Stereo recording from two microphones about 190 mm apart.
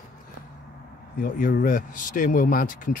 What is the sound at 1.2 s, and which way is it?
Speech, 50° left (ahead or behind).